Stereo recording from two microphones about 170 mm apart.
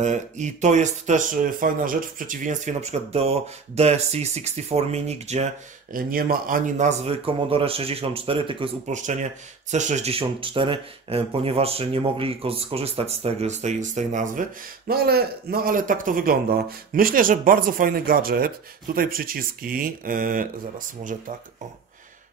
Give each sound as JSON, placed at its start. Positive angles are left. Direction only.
{"t": 0.0, "sound": "speech", "side_deg": -45}
{"t": 8.8, "sound": "speech", "side_deg": -45}